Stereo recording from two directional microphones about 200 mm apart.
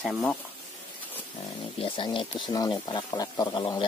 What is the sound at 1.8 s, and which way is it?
Speech, 25° left (ahead or behind).